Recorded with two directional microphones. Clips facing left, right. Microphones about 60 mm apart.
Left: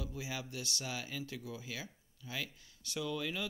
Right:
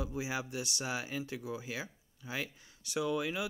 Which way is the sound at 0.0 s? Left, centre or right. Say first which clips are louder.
Right 6 dB; right.